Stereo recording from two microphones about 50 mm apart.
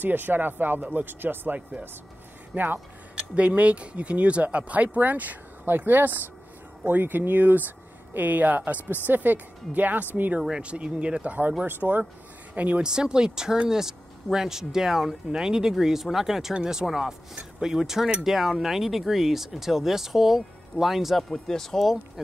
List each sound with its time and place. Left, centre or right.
0.0 s speech: right
3.2 s speech: right
10.5 s speech: right
12.8 s a man's voice: centre
21.3 s speech: centre